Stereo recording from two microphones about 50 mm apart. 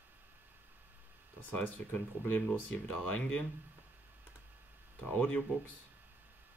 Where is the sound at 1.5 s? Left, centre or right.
Left.